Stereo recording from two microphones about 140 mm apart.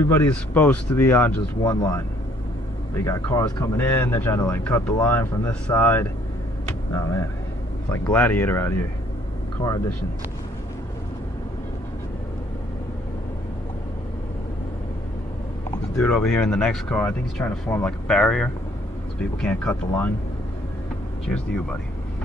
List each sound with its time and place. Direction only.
0.0 s speech: 20° left (ahead or behind)
1.6 s speech: 25° left (ahead or behind)
16.0 s speech: 5° left (ahead or behind)